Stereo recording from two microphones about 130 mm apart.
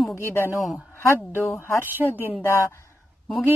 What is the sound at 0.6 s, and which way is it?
Speech, centre (ahead or behind).